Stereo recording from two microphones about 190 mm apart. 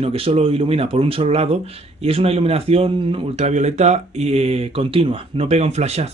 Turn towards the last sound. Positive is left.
turn(degrees=-35)  # may be behind; listen again after turning